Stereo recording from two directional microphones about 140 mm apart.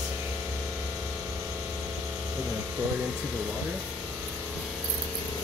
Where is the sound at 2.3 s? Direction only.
15° right (ahead or behind).